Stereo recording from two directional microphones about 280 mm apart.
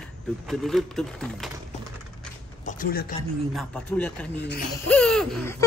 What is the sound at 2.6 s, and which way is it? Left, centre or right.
Speech, left.